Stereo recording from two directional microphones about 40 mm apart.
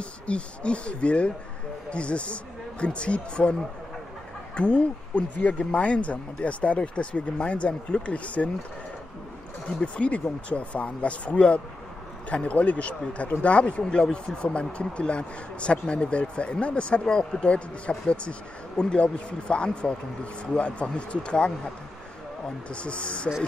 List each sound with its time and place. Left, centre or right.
0.3 s a man's voice: left
4.6 s a man's voice: left
9.7 s a man's voice: left
22.7 s a man's voice: left